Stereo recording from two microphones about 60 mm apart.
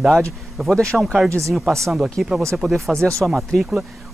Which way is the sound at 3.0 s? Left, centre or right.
Right.